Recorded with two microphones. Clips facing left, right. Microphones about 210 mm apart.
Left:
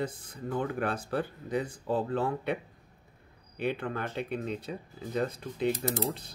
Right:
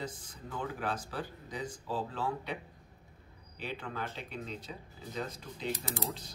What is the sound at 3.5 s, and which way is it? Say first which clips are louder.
Speech: left 8 dB; 60° left (ahead or behind).